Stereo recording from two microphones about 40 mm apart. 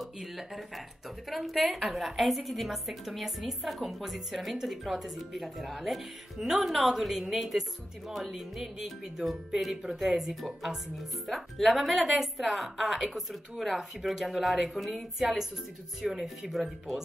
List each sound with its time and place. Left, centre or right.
0.0 s a woman's voice: centre